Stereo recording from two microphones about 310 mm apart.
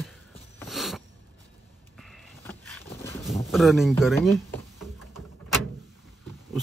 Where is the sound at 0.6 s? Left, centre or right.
Centre.